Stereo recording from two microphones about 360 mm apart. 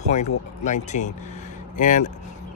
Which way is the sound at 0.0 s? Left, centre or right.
Centre.